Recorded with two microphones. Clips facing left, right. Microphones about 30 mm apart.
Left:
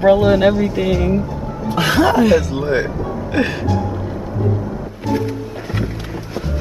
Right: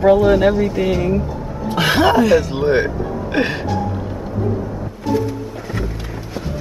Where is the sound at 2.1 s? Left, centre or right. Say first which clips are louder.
Even; centre.